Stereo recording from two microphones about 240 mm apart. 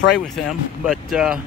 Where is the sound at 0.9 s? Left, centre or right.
Centre.